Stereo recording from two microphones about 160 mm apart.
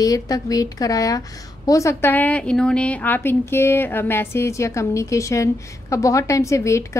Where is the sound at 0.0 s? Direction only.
20° left (ahead or behind).